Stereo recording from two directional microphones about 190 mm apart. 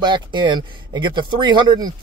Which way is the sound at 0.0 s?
25° right (ahead or behind).